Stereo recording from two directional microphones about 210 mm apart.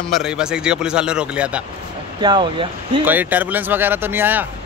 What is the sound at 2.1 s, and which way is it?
Speech, 20° right (ahead or behind).